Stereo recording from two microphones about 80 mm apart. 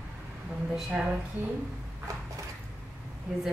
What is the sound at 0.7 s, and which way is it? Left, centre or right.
Speech, centre.